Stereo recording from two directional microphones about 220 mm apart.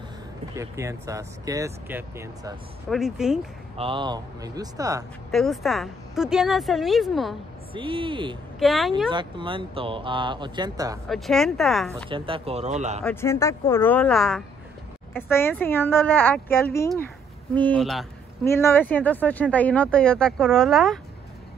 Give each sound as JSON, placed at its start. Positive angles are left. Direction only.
{"t": 0.6, "sound": "a woman's voice", "side_deg": -15}
{"t": 3.7, "sound": "speech", "side_deg": -25}
{"t": 5.3, "sound": "a woman's voice", "side_deg": 0}
{"t": 7.7, "sound": "speech", "side_deg": -25}
{"t": 8.5, "sound": "a woman's voice", "side_deg": 0}
{"t": 9.1, "sound": "speech", "side_deg": -20}
{"t": 11.1, "sound": "a woman's voice", "side_deg": 0}
{"t": 12.1, "sound": "speech", "side_deg": -25}
{"t": 13.0, "sound": "speech", "side_deg": 10}
{"t": 15.1, "sound": "a woman's voice", "side_deg": 10}
{"t": 18.4, "sound": "speech", "side_deg": 10}